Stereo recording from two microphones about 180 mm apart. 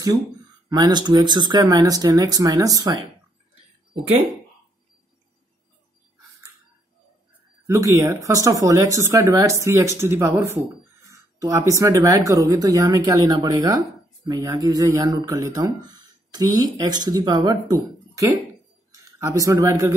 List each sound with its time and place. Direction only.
0.7 s speech: 25° right (ahead or behind)
7.6 s speech: 15° right (ahead or behind)